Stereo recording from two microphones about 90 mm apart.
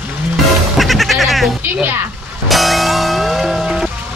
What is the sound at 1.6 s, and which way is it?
Speech, 20° right (ahead or behind).